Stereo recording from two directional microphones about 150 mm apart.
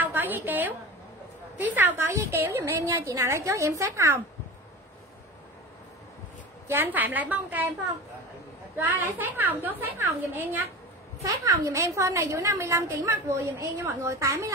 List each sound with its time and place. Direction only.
0.0 s a woman's voice: 15° right (ahead or behind)
6.7 s a woman's voice: 15° right (ahead or behind)
8.7 s a woman's voice: 15° right (ahead or behind)